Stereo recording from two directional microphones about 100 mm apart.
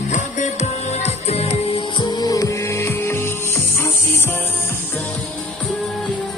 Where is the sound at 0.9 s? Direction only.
90° left.